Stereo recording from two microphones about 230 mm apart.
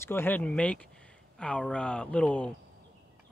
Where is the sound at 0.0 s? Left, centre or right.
Centre.